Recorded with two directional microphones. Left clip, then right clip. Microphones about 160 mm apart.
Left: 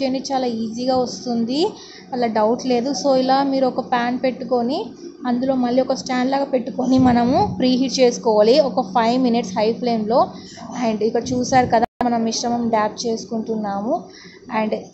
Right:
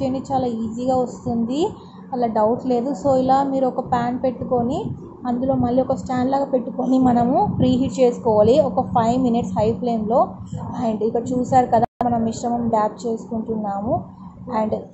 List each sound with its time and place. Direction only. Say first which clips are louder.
0.0 s a woman's voice: left 1 dB; centre (ahead or behind)
14.5 s a woman's voice: even; centre (ahead or behind)